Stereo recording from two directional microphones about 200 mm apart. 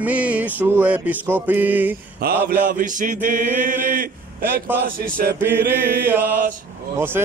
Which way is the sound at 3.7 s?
40° right (ahead or behind).